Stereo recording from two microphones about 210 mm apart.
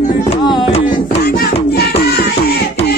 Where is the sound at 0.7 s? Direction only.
30° left (ahead or behind).